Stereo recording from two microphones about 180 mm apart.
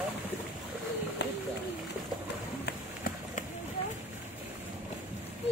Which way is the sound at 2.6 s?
55° left (ahead or behind).